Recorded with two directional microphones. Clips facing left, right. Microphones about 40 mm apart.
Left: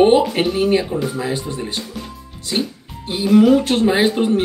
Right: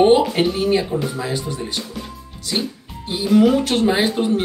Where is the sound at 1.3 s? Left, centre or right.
Left.